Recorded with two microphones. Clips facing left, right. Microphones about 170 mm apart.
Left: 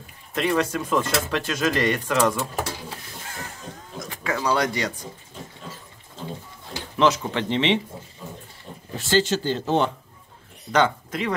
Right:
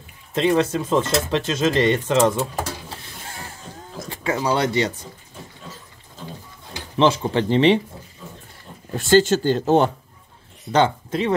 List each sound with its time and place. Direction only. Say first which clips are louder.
0.3 s speech: right 4 dB; 25° right (ahead or behind)
4.1 s speech: right 2 dB; 25° right (ahead or behind)
7.0 s speech: right 3 dB; 30° right (ahead or behind)
8.9 s speech: right 6 dB; 50° right (ahead or behind)
10.7 s speech: right 3 dB; 30° right (ahead or behind)